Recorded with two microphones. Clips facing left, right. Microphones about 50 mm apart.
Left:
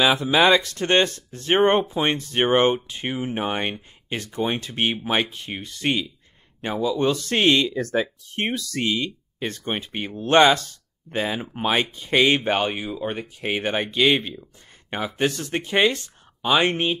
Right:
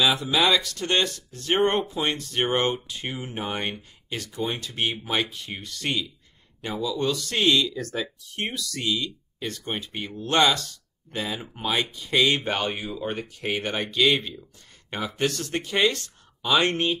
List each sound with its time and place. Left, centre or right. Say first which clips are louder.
0.0 s speech: left 4 dB; left
12.6 s speech: left 3 dB; centre
13.4 s speech: left 4 dB; left